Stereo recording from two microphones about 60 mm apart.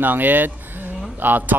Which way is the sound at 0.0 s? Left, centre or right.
Right.